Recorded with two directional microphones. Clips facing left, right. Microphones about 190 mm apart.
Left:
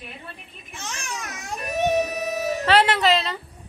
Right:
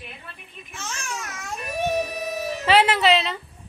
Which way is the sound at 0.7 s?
15° left (ahead or behind).